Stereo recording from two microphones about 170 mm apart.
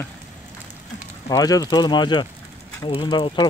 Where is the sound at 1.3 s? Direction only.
20° left (ahead or behind).